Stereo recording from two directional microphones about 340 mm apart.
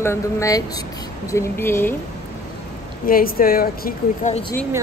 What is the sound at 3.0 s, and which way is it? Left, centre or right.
Speech, left.